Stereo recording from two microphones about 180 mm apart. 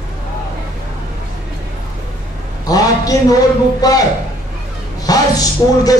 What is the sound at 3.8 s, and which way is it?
Speech, 20° left (ahead or behind).